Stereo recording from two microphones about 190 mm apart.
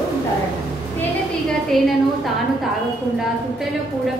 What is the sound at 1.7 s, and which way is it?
Speech, centre (ahead or behind).